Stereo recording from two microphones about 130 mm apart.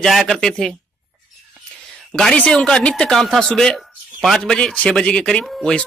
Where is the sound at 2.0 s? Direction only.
5° left (ahead or behind).